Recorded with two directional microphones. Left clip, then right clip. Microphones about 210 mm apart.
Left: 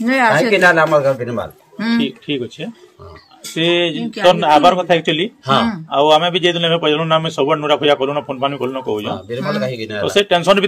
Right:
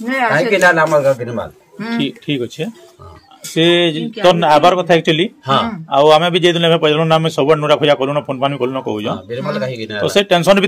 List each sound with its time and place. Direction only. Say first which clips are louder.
0.0 s speech: left 2 dB; 55° left (ahead or behind)
0.5 s speech: even; 5° right (ahead or behind)
2.0 s a man's voice: right 4 dB; 55° right (ahead or behind)
9.3 s speech: even; 5° right (ahead or behind)
10.0 s a man's voice: right 1 dB; 55° right (ahead or behind)